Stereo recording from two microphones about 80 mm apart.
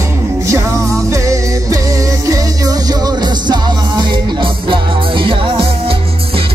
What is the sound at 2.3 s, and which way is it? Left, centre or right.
Music, right.